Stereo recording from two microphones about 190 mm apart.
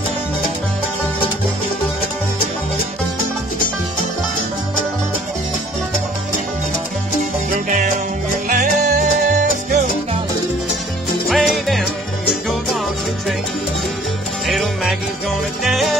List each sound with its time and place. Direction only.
7.5 s music: 40° right (ahead or behind)
11.2 s music: centre (ahead or behind)
14.5 s music: centre (ahead or behind)